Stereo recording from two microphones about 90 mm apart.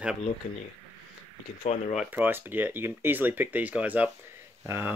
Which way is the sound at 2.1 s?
20° right (ahead or behind).